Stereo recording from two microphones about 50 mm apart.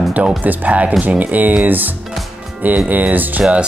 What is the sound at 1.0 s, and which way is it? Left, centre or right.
Music, right.